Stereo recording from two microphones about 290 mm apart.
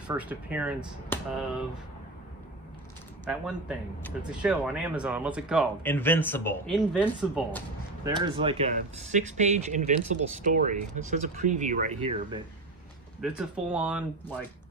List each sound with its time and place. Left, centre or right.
0.1 s speech: centre
1.1 s a sound: centre
3.3 s speech: centre
8.0 s speech: centre
13.2 s speech: centre